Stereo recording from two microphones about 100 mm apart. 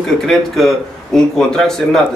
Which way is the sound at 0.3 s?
5° left (ahead or behind).